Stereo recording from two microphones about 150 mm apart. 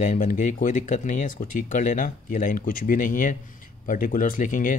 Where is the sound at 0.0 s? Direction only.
55° left (ahead or behind).